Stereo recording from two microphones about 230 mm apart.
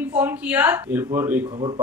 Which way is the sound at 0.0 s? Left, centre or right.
Centre.